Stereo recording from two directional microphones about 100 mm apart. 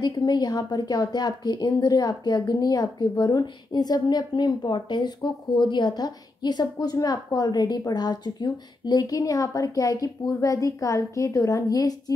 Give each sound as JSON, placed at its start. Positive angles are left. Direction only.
{"t": 0.0, "sound": "a woman's voice", "side_deg": 45}